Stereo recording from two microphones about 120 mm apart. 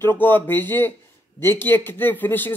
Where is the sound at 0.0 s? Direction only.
15° left (ahead or behind).